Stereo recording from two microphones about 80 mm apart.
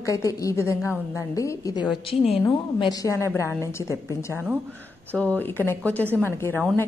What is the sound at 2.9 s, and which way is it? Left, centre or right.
Speech, left.